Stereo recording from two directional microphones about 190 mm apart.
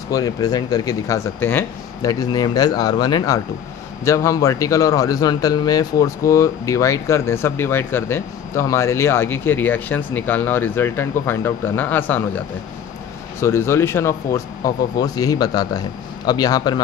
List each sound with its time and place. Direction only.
0.1 s a man's voice: 20° left (ahead or behind)